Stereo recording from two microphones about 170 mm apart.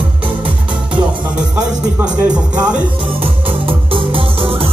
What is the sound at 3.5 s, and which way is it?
Music, 30° right (ahead or behind).